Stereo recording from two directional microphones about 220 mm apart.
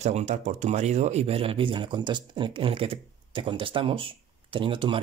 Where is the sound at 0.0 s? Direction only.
30° right (ahead or behind).